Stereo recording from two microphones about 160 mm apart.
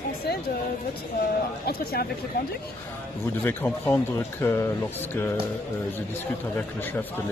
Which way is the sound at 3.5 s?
10° left (ahead or behind).